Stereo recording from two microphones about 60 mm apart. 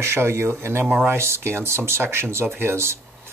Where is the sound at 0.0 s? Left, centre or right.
Right.